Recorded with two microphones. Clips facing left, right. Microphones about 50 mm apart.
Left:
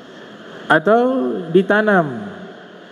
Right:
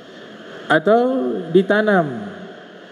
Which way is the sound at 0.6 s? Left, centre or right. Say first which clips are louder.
Left 1 dB; left.